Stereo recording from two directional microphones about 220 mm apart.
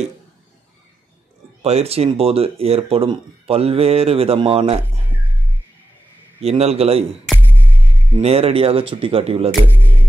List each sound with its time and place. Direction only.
1.6 s speech: 30° right (ahead or behind)
6.4 s speech: 30° right (ahead or behind)
7.2 s music: 10° left (ahead or behind)
8.2 s speech: 25° right (ahead or behind)
9.5 s speech: 10° right (ahead or behind)